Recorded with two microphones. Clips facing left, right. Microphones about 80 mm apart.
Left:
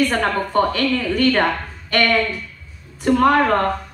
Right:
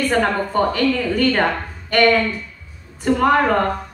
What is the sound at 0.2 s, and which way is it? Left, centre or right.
A woman's voice, centre.